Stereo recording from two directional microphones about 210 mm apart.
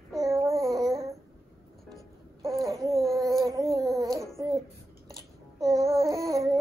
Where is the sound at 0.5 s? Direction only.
Centre (ahead or behind).